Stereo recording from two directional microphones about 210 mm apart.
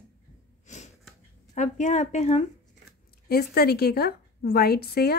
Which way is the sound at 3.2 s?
50° left (ahead or behind).